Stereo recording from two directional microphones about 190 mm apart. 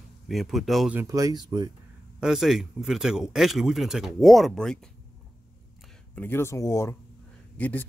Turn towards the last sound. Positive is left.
turn(degrees=10)  # may be behind; listen again after turning